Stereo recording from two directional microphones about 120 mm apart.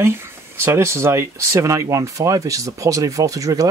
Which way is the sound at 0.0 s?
20° right (ahead or behind).